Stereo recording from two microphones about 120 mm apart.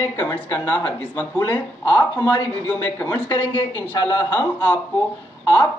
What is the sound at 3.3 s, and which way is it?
Speech, 40° left (ahead or behind).